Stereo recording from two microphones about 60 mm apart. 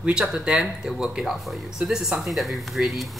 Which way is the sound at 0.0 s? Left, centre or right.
Right.